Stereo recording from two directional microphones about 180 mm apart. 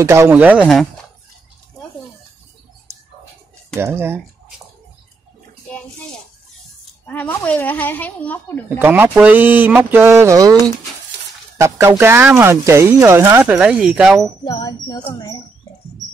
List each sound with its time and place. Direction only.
0.0 s speech: 15° right (ahead or behind)
3.7 s speech: 15° right (ahead or behind)
7.1 s a woman's voice: 10° left (ahead or behind)
8.6 s speech: 10° right (ahead or behind)
11.6 s speech: 15° right (ahead or behind)
14.4 s wind chime: 25° left (ahead or behind)